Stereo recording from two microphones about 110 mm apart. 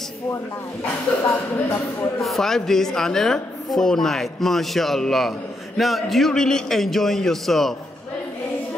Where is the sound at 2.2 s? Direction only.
5° left (ahead or behind).